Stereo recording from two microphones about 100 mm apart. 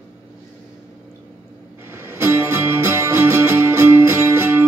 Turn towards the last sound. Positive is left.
turn(degrees=-25)  # may be behind; listen again after turning